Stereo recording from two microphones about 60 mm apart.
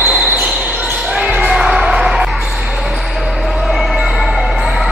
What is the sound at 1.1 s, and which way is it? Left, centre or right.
Basketball bounce, right.